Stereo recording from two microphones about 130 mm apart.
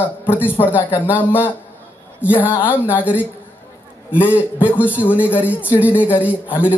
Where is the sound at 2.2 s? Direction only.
10° right (ahead or behind).